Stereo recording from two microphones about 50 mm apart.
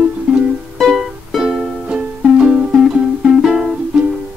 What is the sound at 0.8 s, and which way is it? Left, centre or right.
Music, centre.